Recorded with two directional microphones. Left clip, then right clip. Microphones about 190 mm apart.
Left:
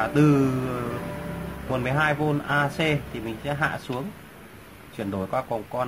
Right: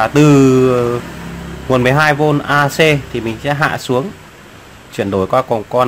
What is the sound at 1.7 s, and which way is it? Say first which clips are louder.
Speech: right 13 dB; 45° right (ahead or behind).